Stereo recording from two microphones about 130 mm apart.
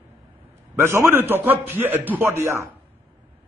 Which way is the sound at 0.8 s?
20° right (ahead or behind).